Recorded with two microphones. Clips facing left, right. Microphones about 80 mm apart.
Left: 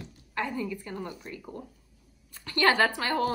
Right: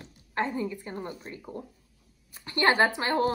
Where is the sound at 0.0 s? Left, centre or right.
Right.